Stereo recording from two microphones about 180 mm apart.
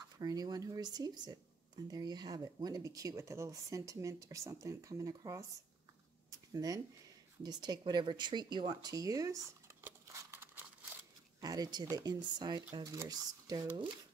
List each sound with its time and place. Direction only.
0.2 s speech: 20° right (ahead or behind)
6.5 s speech: 20° right (ahead or behind)
9.8 s coin: 15° right (ahead or behind)
11.4 s speech: 20° right (ahead or behind)